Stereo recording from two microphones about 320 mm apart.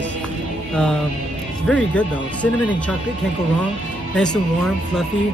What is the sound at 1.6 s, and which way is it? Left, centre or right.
Speech, centre.